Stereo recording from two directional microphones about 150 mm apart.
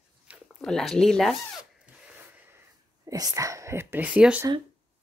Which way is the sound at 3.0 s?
25° right (ahead or behind).